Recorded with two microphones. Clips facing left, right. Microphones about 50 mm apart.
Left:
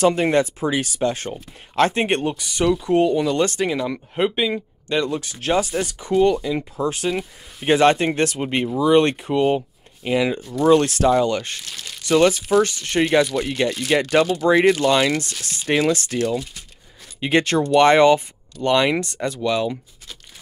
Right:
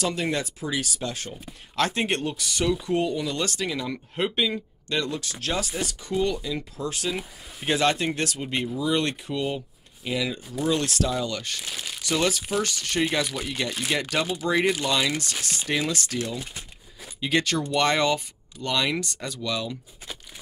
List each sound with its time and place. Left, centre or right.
0.0 s speech: left; by 2.9 s centre
2.9 s speech: left
11.6 s crumpling: centre
12.1 s speech: left
12.6 s speech: left
13.3 s speech: centre
13.9 s speech: left